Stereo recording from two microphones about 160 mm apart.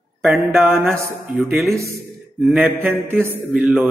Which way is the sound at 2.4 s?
10° right (ahead or behind).